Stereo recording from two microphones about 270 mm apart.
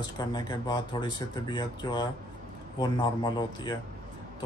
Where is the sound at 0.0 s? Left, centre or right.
Centre.